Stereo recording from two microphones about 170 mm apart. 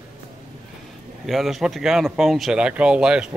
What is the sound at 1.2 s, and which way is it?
Speech, centre (ahead or behind).